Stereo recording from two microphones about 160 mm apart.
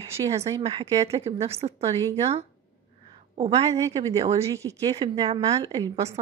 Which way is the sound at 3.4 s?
40° right (ahead or behind).